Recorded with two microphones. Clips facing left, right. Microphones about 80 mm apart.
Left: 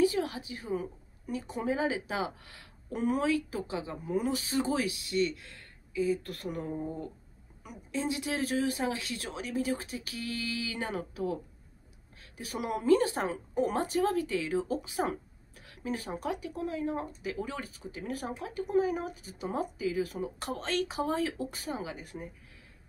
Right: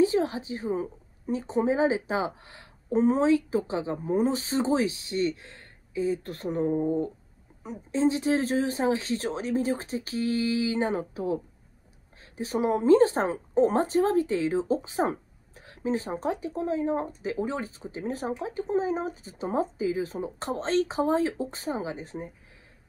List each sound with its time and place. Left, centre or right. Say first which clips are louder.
0.0 s a woman's voice: right 4 dB; right
12.4 s a woman's voice: right 8 dB; right